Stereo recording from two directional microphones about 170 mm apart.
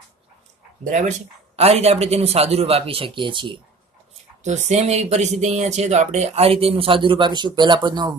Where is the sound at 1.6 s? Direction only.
35° right (ahead or behind).